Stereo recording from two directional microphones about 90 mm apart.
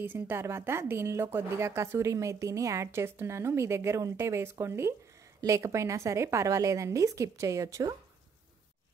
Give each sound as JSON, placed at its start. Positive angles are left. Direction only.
{"t": 0.0, "sound": "speech", "side_deg": -25}